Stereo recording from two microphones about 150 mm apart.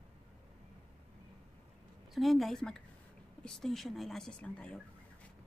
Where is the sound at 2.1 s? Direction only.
Centre (ahead or behind).